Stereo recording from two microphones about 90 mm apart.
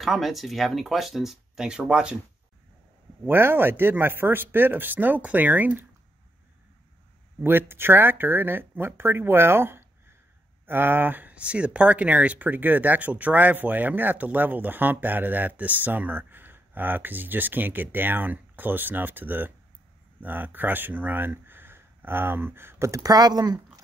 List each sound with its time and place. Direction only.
0.0 s speech: centre (ahead or behind)
3.3 s speech: 25° right (ahead or behind)
7.4 s speech: 25° right (ahead or behind); by 23.6 s 50° right (ahead or behind)